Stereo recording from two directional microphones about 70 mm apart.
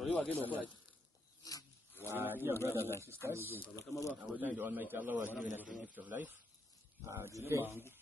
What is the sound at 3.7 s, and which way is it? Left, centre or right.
Speech, left.